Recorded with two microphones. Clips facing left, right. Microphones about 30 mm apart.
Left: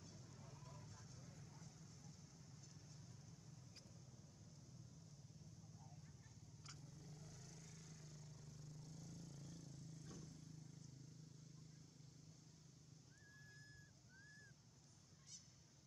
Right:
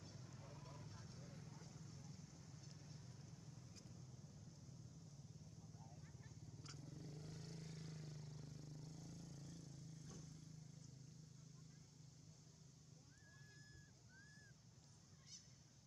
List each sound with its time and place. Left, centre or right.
0.1 s a sound: right
0.4 s vehicle: right
1.4 s vehicle: right
6.8 s vehicle: right
7.2 s vehicle: right
8.7 s a sound: centre
10.1 s vehicle: centre